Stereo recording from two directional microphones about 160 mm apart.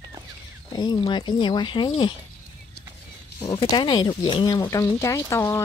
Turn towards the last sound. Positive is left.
turn(degrees=15)  # may be behind; listen again after turning